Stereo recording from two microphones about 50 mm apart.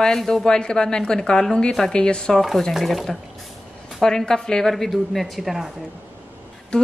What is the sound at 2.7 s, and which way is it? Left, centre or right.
Speech, centre.